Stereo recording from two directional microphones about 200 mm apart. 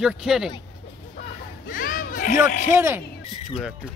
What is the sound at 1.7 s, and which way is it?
Children playing, 45° left (ahead or behind).